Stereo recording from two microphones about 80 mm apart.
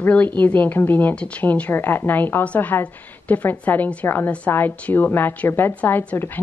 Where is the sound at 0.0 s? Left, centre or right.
Left.